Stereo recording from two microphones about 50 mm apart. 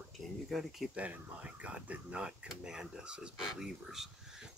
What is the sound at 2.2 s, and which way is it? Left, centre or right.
Speech, centre.